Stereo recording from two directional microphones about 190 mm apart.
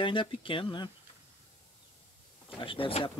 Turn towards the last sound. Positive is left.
turn(degrees=30)  # may be behind; listen again after turning